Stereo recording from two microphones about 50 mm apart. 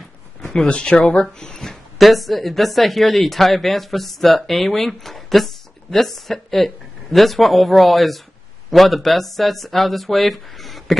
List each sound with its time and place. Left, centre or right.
0.6 s speech: left; by 11.0 s centre